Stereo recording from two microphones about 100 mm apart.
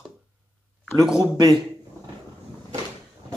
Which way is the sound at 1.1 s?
50° right (ahead or behind).